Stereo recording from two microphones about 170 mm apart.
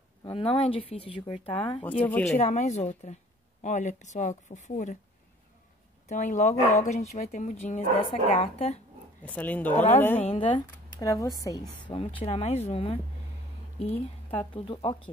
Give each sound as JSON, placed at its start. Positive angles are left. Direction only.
{"t": 0.2, "sound": "speech", "side_deg": 35}
{"t": 1.8, "sound": "a woman's voice", "side_deg": 10}
{"t": 2.3, "sound": "speech", "side_deg": 45}
{"t": 6.0, "sound": "speech", "side_deg": 45}
{"t": 9.2, "sound": "a woman's voice", "side_deg": 10}
{"t": 10.2, "sound": "speech", "side_deg": 30}
{"t": 11.0, "sound": "speech", "side_deg": 20}
{"t": 12.3, "sound": "a woman's voice", "side_deg": 40}